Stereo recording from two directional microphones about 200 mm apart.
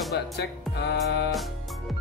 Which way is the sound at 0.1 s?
55° left (ahead or behind).